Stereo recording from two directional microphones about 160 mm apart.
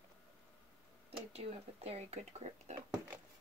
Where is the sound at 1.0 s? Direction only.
40° right (ahead or behind).